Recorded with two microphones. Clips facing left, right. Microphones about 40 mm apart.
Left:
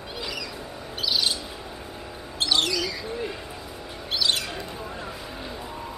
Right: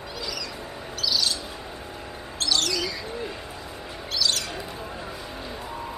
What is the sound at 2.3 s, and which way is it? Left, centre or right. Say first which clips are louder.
Bird: left 2 dB; left.